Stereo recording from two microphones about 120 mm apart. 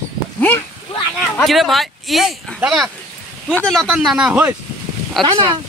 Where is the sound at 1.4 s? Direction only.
Centre (ahead or behind).